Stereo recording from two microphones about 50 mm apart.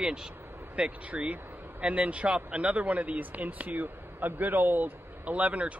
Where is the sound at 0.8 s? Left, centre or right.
Right.